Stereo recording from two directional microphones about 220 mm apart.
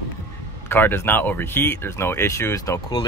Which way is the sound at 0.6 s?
10° left (ahead or behind).